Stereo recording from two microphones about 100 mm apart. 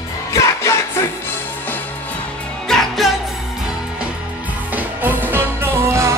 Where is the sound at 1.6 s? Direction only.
20° left (ahead or behind).